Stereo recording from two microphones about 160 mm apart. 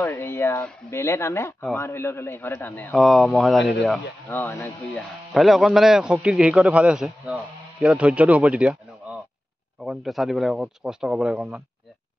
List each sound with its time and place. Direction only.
0.0 s speech: 15° left (ahead or behind)
2.9 s speech: centre (ahead or behind)
4.3 s speech: 15° left (ahead or behind)
4.9 s speech: centre (ahead or behind)